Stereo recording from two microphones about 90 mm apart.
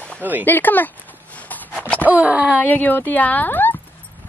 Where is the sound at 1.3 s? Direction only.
15° left (ahead or behind).